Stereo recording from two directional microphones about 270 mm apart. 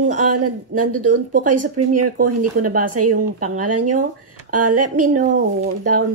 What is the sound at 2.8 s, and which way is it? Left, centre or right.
Speech, right.